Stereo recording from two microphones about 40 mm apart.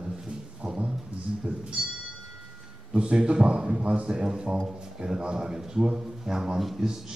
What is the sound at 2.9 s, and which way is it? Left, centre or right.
A man's voice, right.